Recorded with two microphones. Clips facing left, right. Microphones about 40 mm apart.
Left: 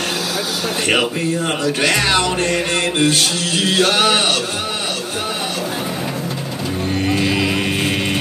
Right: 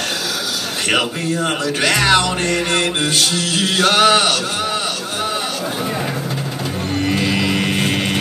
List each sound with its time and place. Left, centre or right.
1.4 s speech: right
3.6 s a sound: right
7.1 s music: centre